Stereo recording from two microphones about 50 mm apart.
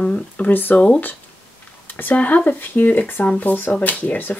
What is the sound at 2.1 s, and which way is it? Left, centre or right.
Speech, left.